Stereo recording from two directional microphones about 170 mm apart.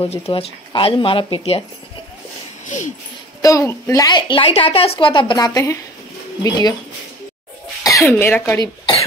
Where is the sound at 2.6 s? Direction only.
45° left (ahead or behind).